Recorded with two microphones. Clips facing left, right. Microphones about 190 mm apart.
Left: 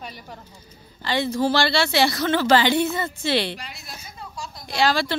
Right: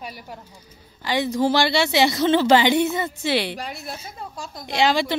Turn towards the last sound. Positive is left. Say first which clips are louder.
# right 2 dB
turn(degrees=-20)  # may be behind; listen again after turning